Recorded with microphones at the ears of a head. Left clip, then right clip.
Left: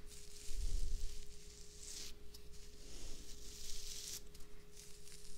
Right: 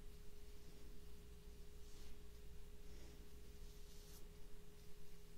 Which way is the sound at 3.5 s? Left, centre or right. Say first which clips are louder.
Left 14 dB; left.